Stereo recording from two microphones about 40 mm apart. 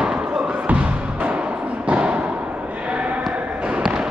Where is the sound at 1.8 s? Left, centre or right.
Right.